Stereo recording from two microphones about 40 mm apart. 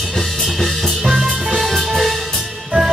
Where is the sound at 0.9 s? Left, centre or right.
Centre.